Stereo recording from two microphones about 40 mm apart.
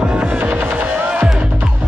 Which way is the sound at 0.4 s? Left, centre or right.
Right.